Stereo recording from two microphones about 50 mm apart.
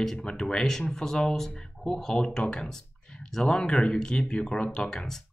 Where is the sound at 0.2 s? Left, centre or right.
Centre.